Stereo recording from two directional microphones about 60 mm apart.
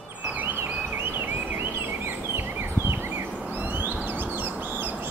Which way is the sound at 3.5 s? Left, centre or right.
Right.